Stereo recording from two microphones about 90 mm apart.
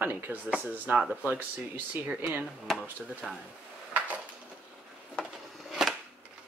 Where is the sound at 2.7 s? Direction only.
5° right (ahead or behind).